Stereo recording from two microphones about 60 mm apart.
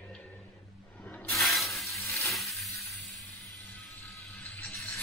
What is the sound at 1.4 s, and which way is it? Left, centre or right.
Spray, centre.